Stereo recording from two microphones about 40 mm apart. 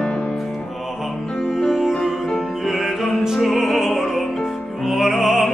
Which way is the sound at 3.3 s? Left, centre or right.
Centre.